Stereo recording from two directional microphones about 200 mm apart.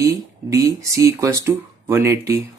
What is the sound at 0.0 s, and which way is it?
Speech, 15° right (ahead or behind).